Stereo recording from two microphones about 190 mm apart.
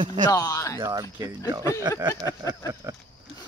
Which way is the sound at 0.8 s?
20° right (ahead or behind).